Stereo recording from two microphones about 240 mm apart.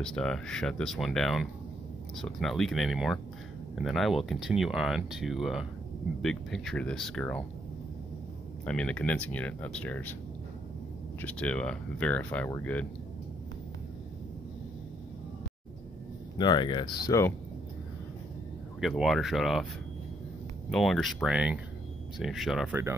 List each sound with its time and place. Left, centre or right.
0.0 s speech: centre
8.6 s speech: centre
11.1 s speech: centre
16.3 s speech: centre
18.8 s speech: centre
20.7 s speech: centre